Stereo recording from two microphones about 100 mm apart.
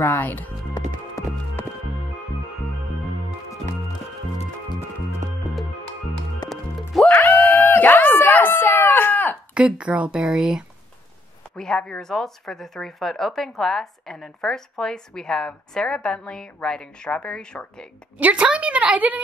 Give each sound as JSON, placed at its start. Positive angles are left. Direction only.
{"t": 0.0, "sound": "speech", "side_deg": 20}
{"t": 1.2, "sound": "music", "side_deg": 35}
{"t": 6.5, "sound": "music", "side_deg": 0}
{"t": 7.1, "sound": "a sound", "side_deg": 20}
{"t": 9.5, "sound": "speech", "side_deg": -10}
{"t": 11.5, "sound": "speech", "side_deg": 5}
{"t": 18.1, "sound": "speech", "side_deg": -15}